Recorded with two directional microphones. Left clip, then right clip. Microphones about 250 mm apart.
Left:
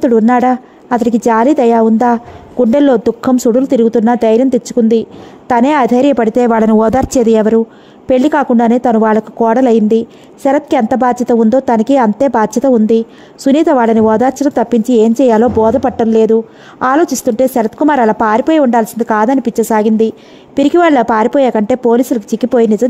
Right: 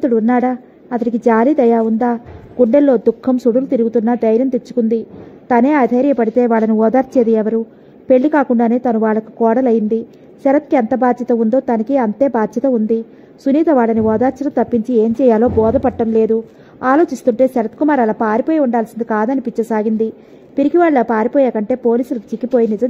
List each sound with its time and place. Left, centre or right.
0.0 s a woman's voice: left